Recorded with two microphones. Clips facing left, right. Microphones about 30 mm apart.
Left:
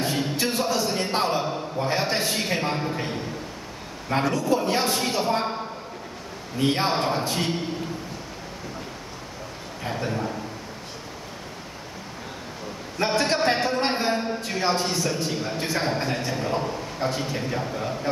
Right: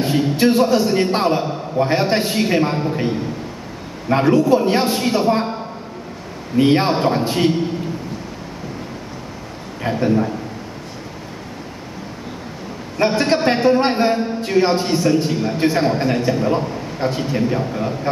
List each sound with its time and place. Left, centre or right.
0.4 s a man's voice: right
2.4 s a man's voice: centre
4.1 s a man's voice: right
6.5 s a man's voice: right
9.8 s a man's voice: right
13.0 s a man's voice: centre
15.8 s a man's voice: centre